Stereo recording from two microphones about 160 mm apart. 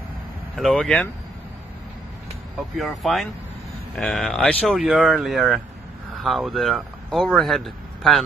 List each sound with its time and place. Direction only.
0.6 s speech: centre (ahead or behind)
2.8 s speech: centre (ahead or behind)